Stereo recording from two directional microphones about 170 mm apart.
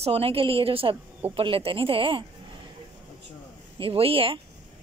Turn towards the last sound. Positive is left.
turn(degrees=-30)  # may be behind; listen again after turning